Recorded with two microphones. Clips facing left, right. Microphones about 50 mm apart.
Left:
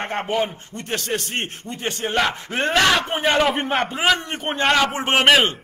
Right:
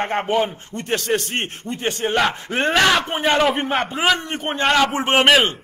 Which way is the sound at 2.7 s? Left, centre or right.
Centre.